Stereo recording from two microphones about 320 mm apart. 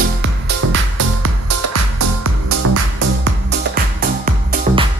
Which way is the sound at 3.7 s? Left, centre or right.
Right.